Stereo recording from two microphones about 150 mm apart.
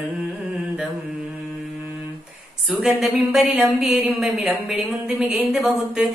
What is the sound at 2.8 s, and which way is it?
Speech, centre (ahead or behind).